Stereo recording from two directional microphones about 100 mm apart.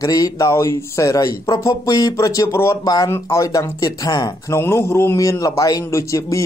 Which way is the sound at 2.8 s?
40° left (ahead or behind).